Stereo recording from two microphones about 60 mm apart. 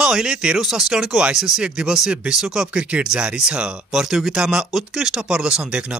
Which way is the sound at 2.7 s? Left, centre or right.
Centre.